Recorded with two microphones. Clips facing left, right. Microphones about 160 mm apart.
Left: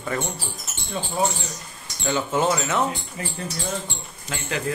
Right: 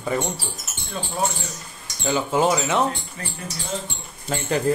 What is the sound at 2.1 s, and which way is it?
Speech, 15° right (ahead or behind).